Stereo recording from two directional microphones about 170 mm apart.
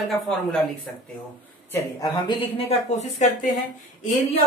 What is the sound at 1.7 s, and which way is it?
A woman's voice, 20° left (ahead or behind).